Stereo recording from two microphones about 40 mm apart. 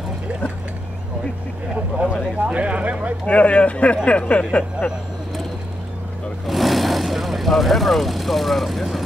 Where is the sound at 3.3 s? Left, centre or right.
Left.